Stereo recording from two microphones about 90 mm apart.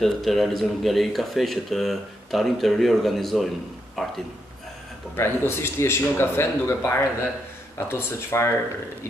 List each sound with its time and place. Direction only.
0.0 s speech: centre (ahead or behind)
5.1 s speech: 25° left (ahead or behind)